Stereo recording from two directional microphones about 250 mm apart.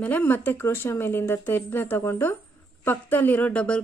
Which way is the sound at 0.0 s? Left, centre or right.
Centre.